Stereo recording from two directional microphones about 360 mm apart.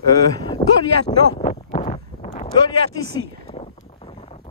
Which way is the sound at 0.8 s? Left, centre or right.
Right.